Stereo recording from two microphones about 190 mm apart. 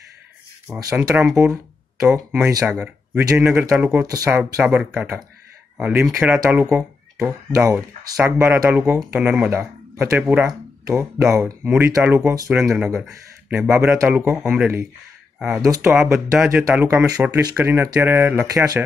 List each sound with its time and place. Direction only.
0.7 s speech: 15° right (ahead or behind)
2.5 s speech: 5° right (ahead or behind)
7.2 s speech: 15° right (ahead or behind)
10.9 s speech: 15° right (ahead or behind)
15.3 s a sound: 5° right (ahead or behind)
15.6 s speech: 15° right (ahead or behind)
15.9 s speech: 5° right (ahead or behind)